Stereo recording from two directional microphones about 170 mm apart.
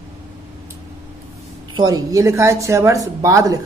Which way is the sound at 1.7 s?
20° right (ahead or behind).